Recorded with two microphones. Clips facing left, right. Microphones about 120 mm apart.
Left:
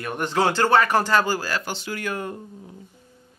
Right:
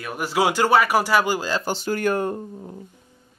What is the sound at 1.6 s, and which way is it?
Speech, 40° right (ahead or behind).